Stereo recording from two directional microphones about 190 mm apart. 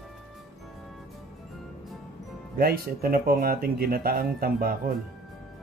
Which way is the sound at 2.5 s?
50° right (ahead or behind).